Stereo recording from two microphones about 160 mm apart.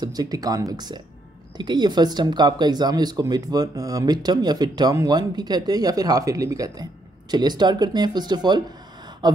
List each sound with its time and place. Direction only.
0.0 s speech: 25° right (ahead or behind)
9.2 s gasp: 25° right (ahead or behind)